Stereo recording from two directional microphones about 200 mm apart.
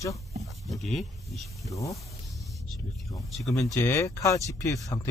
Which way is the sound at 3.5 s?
15° left (ahead or behind).